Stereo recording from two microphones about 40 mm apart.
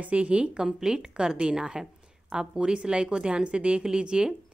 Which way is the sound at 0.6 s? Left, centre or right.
Centre.